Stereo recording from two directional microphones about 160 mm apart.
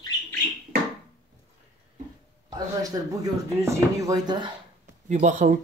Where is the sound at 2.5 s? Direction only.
20° right (ahead or behind).